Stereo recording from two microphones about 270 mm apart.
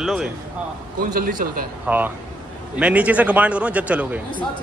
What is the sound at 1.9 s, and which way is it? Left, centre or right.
A man's voice, centre.